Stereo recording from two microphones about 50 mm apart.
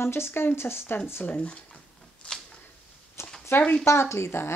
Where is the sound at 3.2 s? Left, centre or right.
Left.